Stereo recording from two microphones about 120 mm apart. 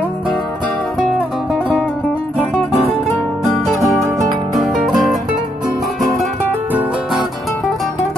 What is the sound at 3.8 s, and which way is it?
Music, centre (ahead or behind).